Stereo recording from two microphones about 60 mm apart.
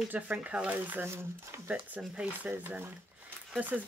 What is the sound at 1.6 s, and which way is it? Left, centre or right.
Speech, right.